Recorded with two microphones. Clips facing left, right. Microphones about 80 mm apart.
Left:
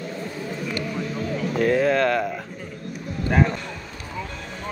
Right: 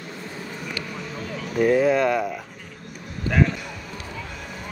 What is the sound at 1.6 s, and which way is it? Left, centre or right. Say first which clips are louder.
Speech: right 2 dB; centre.